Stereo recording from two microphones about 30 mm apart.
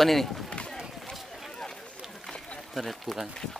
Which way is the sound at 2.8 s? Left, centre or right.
Centre.